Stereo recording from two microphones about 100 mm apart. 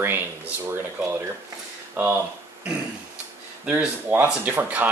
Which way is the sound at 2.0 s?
20° right (ahead or behind).